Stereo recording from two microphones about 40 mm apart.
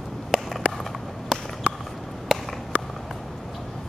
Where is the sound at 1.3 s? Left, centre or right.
Centre.